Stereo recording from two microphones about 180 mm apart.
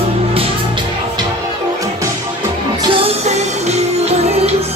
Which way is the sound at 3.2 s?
35° right (ahead or behind).